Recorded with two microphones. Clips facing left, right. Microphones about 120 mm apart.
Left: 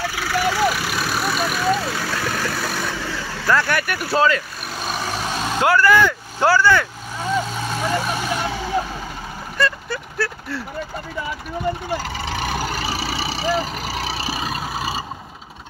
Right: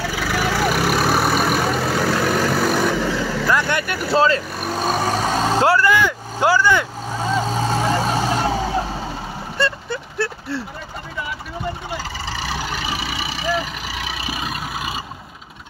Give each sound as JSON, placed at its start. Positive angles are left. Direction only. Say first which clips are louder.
{"t": 0.7, "sound": "vehicle", "louder": "right 6 dB", "side_deg": -55}
{"t": 3.4, "sound": "vehicle", "louder": "left 3 dB", "side_deg": -20}
{"t": 4.6, "sound": "vehicle", "louder": "right 8 dB", "side_deg": -40}
{"t": 7.2, "sound": "vehicle", "louder": "right 2 dB", "side_deg": -35}
{"t": 9.6, "sound": "a sound", "louder": "left 1 dB", "side_deg": -25}
{"t": 12.3, "sound": "vehicle", "louder": "left 2 dB", "side_deg": 55}